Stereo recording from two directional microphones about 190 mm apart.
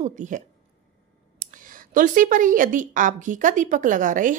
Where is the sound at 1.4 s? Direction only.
45° right (ahead or behind).